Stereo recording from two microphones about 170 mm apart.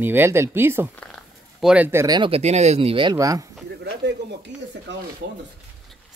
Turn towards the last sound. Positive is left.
turn(degrees=-90)